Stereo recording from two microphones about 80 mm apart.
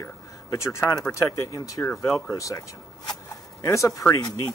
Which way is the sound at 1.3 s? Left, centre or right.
Left.